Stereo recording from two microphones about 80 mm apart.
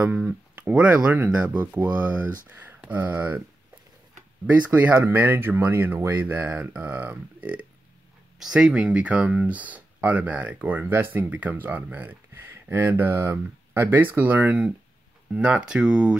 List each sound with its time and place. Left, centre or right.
0.0 s speech: centre
4.5 s speech: centre
8.4 s speech: centre